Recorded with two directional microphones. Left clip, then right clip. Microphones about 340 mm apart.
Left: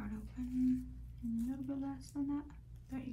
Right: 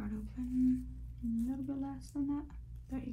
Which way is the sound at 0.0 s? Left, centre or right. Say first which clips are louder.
Right 3 dB; centre.